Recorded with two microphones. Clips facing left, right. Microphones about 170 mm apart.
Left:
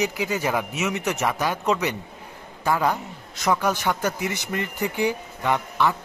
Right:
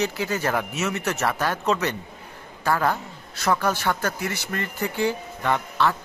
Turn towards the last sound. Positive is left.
turn(degrees=15)  # may be behind; listen again after turning